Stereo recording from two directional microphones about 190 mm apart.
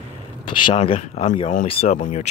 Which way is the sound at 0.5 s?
25° left (ahead or behind).